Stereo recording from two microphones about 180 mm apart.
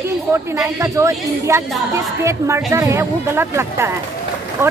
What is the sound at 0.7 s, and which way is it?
A woman's voice, 15° right (ahead or behind).